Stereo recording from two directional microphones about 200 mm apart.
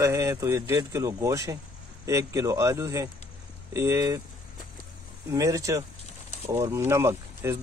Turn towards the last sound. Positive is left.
turn(degrees=-10)  # may be behind; listen again after turning